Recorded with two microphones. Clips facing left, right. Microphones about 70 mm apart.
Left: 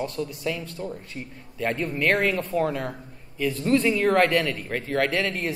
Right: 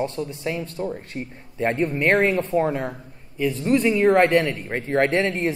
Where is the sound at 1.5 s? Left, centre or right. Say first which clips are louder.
Right 4 dB; right.